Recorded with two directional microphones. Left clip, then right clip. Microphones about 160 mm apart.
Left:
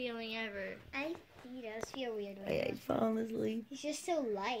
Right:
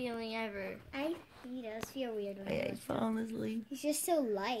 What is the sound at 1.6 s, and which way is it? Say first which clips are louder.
Speech: right 1 dB; 55° right (ahead or behind).